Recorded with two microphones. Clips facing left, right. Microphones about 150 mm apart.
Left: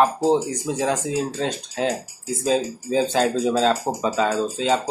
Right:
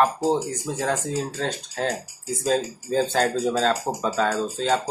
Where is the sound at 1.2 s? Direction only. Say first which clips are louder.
Left 3 dB; 5° left (ahead or behind).